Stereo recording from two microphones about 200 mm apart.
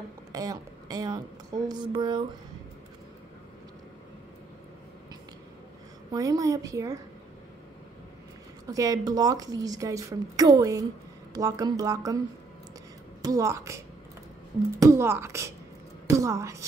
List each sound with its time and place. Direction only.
0.3 s speech: 20° right (ahead or behind)
6.1 s a woman's voice: 20° right (ahead or behind)
8.6 s a woman's voice: 15° right (ahead or behind)
13.2 s a woman's voice: 15° right (ahead or behind)